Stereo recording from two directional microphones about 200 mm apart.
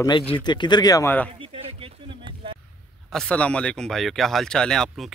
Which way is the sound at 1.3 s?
30° right (ahead or behind).